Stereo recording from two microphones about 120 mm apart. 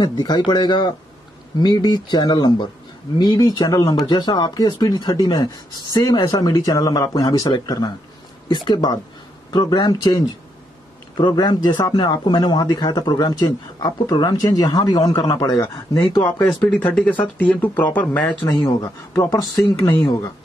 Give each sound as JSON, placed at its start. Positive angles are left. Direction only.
{"t": 0.0, "sound": "speech", "side_deg": 35}
{"t": 16.5, "sound": "speech", "side_deg": 15}
{"t": 18.7, "sound": "speech", "side_deg": 30}